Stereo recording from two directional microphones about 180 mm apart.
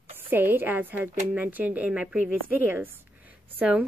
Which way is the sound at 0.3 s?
10° right (ahead or behind).